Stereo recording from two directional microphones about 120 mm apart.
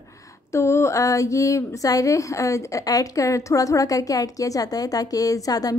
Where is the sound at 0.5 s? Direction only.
20° left (ahead or behind).